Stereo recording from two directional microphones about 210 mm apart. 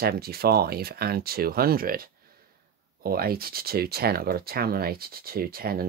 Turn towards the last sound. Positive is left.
turn(degrees=-45)  # may be behind; listen again after turning